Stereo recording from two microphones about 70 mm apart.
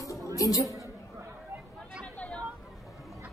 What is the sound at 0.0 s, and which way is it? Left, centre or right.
Music, left.